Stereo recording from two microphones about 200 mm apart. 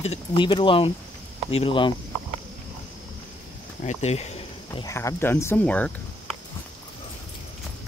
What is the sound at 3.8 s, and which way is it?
Speech, 35° left (ahead or behind).